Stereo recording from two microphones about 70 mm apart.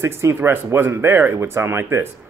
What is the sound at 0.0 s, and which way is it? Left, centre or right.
Speech, right.